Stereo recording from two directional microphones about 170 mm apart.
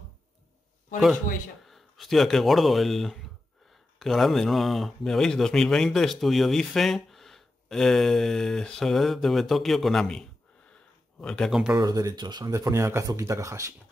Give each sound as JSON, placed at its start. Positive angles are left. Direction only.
{"t": 0.9, "sound": "speech", "side_deg": 0}
{"t": 10.7, "sound": "a sound", "side_deg": 5}
{"t": 11.8, "sound": "speech", "side_deg": -20}